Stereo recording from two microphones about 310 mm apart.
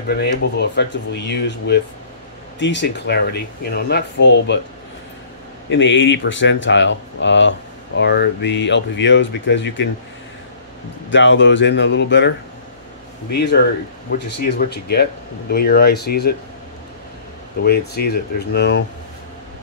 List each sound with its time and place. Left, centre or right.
0.1 s speech: left
5.7 s speech: left
11.1 s speech: left
13.3 s speech: left
17.6 s speech: left